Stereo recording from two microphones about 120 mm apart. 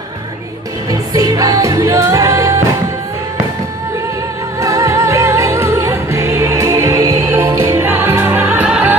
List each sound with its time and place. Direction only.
1.1 s music: 30° right (ahead or behind)
4.6 s music: 25° right (ahead or behind); by 8.9 s 10° right (ahead or behind)